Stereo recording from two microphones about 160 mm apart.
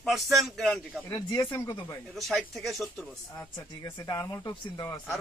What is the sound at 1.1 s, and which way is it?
Speech, 25° left (ahead or behind).